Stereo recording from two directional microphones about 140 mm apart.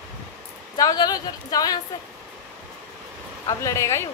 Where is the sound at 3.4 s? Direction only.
20° left (ahead or behind).